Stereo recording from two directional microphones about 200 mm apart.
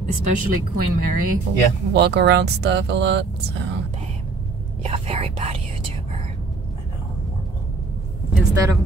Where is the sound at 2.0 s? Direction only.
60° right (ahead or behind).